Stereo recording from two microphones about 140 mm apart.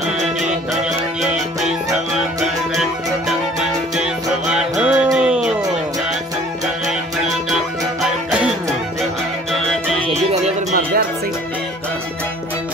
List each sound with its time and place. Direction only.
3.9 s music: 5° right (ahead or behind)
7.5 s music: 5° right (ahead or behind)
9.7 s music: 5° left (ahead or behind)
10.0 s music: 50° right (ahead or behind)